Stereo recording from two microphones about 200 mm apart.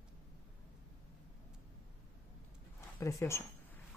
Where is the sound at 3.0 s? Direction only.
15° left (ahead or behind).